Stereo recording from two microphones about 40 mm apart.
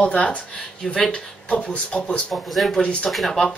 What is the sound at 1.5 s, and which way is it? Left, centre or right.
Speech, left.